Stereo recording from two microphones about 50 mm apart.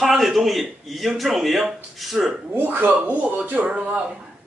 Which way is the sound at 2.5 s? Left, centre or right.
Right.